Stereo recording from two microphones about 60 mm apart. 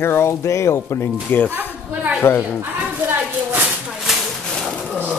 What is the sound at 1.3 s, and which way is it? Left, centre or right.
A woman's voice, left.